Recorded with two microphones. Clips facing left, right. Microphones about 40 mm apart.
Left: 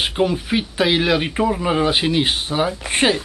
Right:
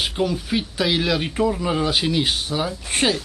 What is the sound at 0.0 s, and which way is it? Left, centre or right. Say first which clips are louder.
Speech: left 3 dB; left.